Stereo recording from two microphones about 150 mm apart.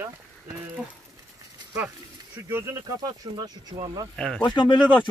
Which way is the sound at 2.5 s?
20° right (ahead or behind).